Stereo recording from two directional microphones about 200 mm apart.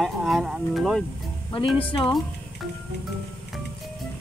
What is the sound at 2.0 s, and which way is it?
Music, centre (ahead or behind).